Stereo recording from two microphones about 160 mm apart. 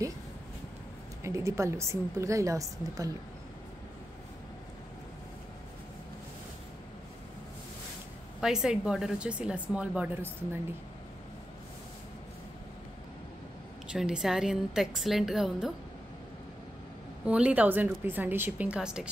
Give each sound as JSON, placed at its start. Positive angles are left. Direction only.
{"t": 1.2, "sound": "a woman's voice", "side_deg": -20}
{"t": 8.4, "sound": "speech", "side_deg": -5}
{"t": 13.9, "sound": "speech", "side_deg": -5}
{"t": 17.3, "sound": "a woman's voice", "side_deg": -5}